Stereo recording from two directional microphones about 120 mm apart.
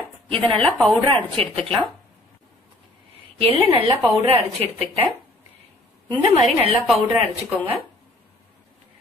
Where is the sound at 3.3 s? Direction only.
50° right (ahead or behind).